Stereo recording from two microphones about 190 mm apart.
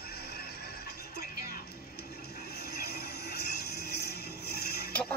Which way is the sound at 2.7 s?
55° left (ahead or behind).